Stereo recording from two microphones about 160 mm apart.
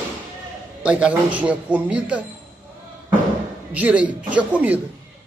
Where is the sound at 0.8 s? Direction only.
10° right (ahead or behind).